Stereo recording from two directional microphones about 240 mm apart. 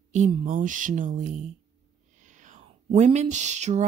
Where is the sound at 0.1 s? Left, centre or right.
Right.